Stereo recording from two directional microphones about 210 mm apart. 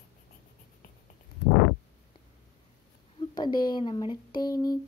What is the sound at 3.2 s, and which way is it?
Speech, 20° left (ahead or behind).